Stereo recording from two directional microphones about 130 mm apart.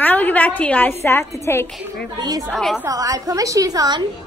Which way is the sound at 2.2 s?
30° right (ahead or behind).